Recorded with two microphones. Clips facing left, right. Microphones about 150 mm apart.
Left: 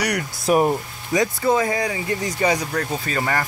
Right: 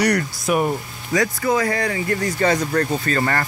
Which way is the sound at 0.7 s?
20° left (ahead or behind).